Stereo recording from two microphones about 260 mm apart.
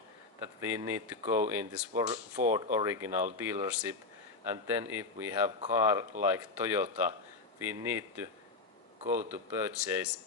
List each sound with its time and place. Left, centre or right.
0.6 s speech: centre